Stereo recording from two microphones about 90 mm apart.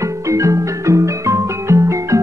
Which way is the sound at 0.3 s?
35° right (ahead or behind).